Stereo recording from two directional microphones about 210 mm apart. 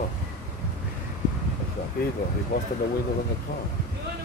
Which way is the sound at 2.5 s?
45° left (ahead or behind).